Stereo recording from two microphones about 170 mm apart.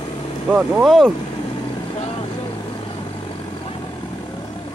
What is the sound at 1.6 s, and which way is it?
Vehicle, 30° left (ahead or behind).